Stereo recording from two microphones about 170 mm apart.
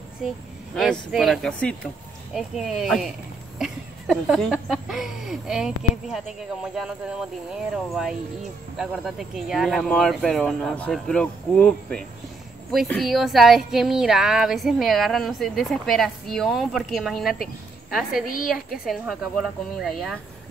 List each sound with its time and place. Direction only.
0.7 s speech: centre (ahead or behind)
18.3 s a woman's voice: 55° left (ahead or behind)
18.7 s speech: centre (ahead or behind)